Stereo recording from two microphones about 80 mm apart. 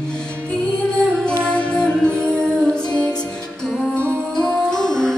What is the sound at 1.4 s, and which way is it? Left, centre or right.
Music, centre.